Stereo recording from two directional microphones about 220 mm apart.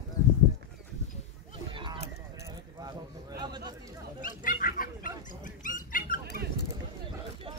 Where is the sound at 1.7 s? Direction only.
20° right (ahead or behind).